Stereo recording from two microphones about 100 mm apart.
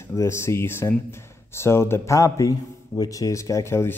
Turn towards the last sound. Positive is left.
turn(degrees=25)  # may be behind; listen again after turning